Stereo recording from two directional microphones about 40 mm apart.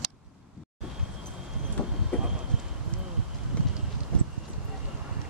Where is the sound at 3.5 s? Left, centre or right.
Left.